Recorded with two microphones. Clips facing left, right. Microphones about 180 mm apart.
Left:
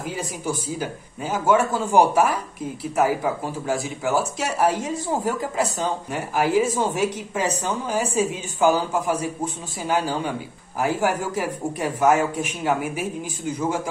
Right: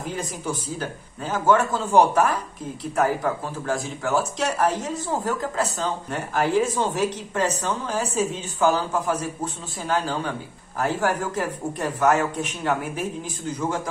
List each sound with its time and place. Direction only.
0.1 s speech: 10° left (ahead or behind)